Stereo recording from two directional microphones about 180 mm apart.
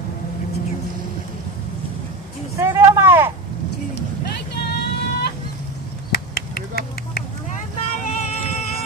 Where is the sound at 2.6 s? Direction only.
15° right (ahead or behind).